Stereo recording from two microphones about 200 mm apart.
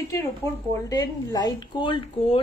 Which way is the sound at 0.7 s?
20° left (ahead or behind).